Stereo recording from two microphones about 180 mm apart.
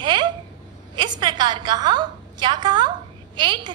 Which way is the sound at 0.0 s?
25° right (ahead or behind).